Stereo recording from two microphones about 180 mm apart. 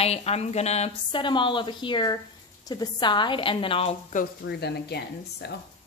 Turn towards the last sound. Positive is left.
turn(degrees=65)  # may be behind; listen again after turning